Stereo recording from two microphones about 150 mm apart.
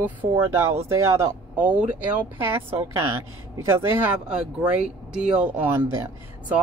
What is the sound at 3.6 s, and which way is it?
Speech, 15° right (ahead or behind).